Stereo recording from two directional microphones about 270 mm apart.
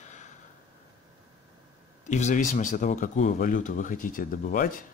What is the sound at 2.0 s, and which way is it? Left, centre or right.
Speech, left.